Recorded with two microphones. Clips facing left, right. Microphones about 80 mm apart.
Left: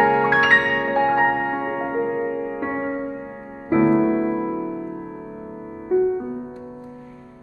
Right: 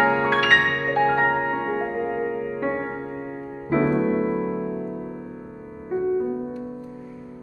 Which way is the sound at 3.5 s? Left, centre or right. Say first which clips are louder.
Left 3 dB; left.